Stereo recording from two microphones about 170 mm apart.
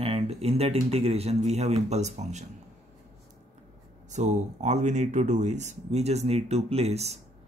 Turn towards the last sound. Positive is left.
turn(degrees=-40)  # may be behind; listen again after turning